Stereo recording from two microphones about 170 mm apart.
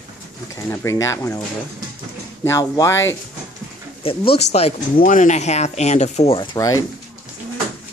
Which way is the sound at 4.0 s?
35° left (ahead or behind).